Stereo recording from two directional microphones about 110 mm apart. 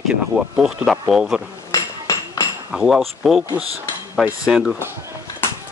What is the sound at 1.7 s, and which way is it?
Hammer, 30° left (ahead or behind).